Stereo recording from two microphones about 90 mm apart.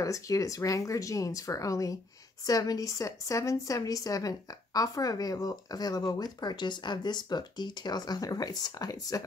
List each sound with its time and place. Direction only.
0.0 s a woman's voice: 40° left (ahead or behind)